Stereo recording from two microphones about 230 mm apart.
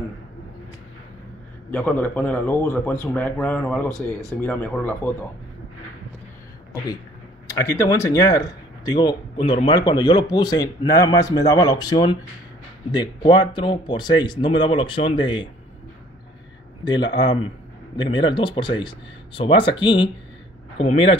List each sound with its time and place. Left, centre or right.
1.7 s speech: centre
4.1 s speech: centre
4.4 s speech: centre
7.4 s speech: centre
16.8 s speech: centre